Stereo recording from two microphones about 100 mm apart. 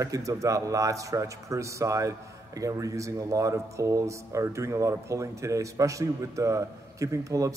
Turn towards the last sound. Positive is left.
turn(degrees=-35)  # may be behind; listen again after turning